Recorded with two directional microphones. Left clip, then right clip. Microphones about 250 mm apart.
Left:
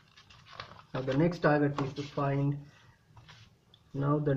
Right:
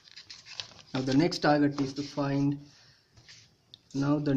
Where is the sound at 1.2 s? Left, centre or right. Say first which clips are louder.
Right 2 dB; right.